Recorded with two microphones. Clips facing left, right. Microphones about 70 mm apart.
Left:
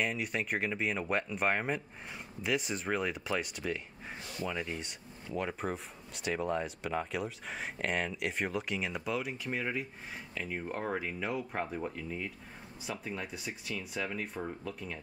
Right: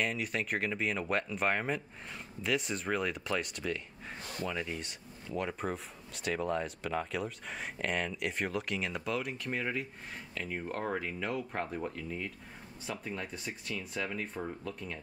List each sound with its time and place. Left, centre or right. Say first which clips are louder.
0.0 s speech: even; centre
4.2 s a sound: right 1 dB; right
4.5 s speech: even; centre